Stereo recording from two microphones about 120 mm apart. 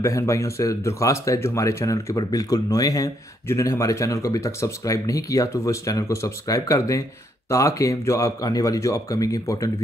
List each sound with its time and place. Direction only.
0.0 s speech: 25° left (ahead or behind)